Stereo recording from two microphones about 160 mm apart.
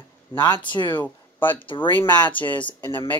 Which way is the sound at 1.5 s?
30° left (ahead or behind).